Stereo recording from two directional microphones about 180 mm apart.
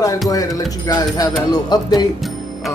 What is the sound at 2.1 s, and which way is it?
Music, centre (ahead or behind).